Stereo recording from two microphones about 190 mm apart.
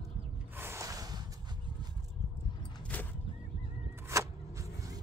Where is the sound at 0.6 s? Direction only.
15° right (ahead or behind).